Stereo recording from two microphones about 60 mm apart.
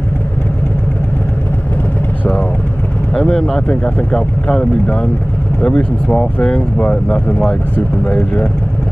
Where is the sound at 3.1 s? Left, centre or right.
Centre.